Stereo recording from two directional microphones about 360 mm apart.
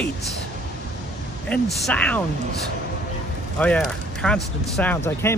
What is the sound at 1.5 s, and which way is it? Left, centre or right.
Speech, centre.